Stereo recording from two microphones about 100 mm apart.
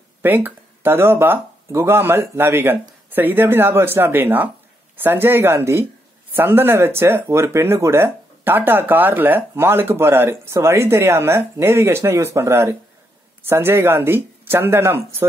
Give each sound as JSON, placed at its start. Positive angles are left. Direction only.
{"t": 0.2, "sound": "speech", "side_deg": -20}